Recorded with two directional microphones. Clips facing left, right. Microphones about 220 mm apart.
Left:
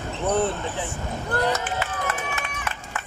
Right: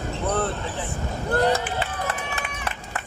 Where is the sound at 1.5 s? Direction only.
30° right (ahead or behind).